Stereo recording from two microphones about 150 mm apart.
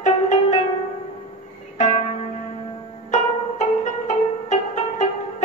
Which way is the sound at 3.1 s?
50° left (ahead or behind).